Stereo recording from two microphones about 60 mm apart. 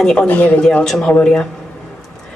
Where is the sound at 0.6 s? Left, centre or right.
Centre.